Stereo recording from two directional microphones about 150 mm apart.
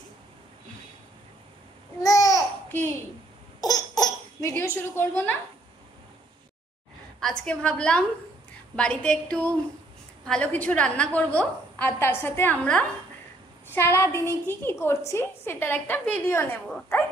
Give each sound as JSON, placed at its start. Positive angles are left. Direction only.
{"t": 2.0, "sound": "babbling", "side_deg": 25}
{"t": 3.6, "sound": "baby laughter", "side_deg": 25}
{"t": 7.2, "sound": "a woman's voice", "side_deg": 5}